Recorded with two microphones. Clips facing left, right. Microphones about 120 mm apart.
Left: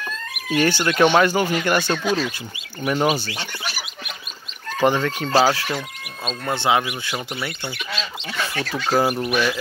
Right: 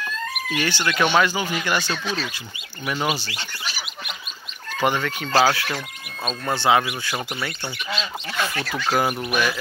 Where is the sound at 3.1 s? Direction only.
55° left (ahead or behind).